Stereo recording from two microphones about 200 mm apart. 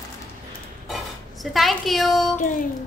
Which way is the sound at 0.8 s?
Centre (ahead or behind).